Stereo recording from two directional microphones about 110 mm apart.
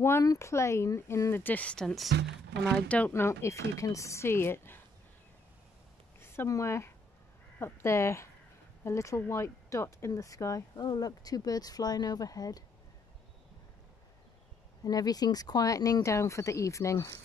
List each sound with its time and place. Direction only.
0.0 s speech: 30° left (ahead or behind); by 2.0 s 5° left (ahead or behind)
3.1 s speech: 25° left (ahead or behind)
6.2 s speech: 25° left (ahead or behind)
14.9 s speech: 35° left (ahead or behind)